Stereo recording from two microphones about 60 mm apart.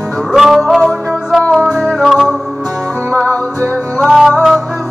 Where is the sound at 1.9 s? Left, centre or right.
Centre.